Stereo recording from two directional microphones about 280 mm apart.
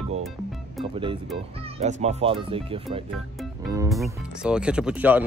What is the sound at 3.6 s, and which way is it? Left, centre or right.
Music, centre.